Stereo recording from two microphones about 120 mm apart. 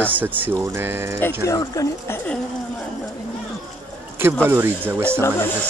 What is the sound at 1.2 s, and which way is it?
Speech, 25° left (ahead or behind).